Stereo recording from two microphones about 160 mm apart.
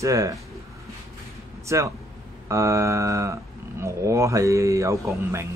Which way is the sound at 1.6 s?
20° right (ahead or behind).